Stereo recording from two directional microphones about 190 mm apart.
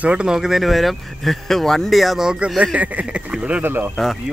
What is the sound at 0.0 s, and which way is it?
Speech, 5° right (ahead or behind).